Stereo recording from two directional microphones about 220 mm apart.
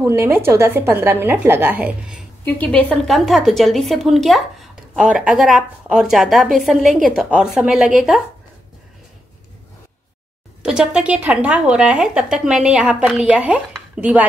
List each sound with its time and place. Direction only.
0.0 s a woman's voice: 10° right (ahead or behind)
2.4 s a woman's voice: 5° left (ahead or behind)
10.6 s a woman's voice: 5° right (ahead or behind)